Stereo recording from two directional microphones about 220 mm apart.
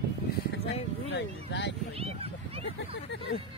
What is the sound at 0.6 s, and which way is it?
Speech, 50° left (ahead or behind).